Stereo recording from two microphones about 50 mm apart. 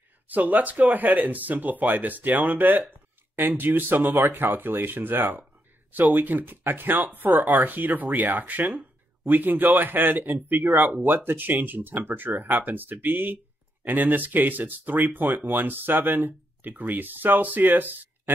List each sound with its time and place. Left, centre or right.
0.3 s speech: right